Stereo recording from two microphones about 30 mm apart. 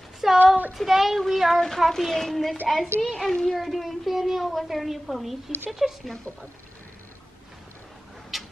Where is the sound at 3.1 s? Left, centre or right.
Centre.